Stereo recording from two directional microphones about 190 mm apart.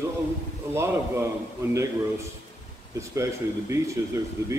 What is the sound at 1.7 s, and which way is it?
A man's voice, 15° right (ahead or behind).